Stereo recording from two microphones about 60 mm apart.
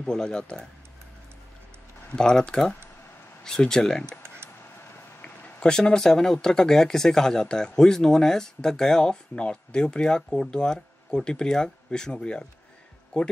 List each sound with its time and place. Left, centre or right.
0.0 s speech: centre
2.1 s speech: centre
5.2 s a sound: left
5.7 s speech: centre